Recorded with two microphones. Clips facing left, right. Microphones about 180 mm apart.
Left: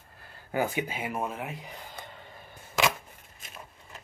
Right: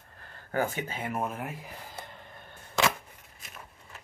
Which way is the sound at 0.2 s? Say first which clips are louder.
Left 1 dB; 10° left (ahead or behind).